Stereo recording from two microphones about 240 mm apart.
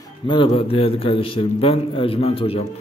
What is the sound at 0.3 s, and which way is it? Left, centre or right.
A man's voice, left.